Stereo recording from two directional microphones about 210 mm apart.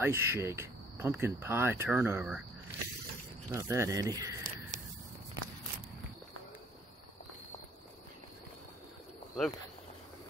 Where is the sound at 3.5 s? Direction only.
15° right (ahead or behind).